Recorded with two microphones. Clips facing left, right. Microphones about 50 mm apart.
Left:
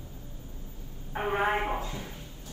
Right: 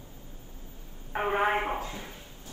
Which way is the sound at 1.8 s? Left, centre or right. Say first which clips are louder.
Even; right.